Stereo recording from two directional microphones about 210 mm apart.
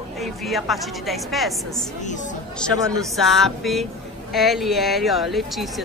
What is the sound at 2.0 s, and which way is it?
Speech, 35° left (ahead or behind).